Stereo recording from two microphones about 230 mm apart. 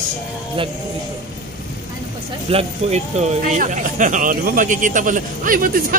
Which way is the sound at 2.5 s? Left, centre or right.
Right.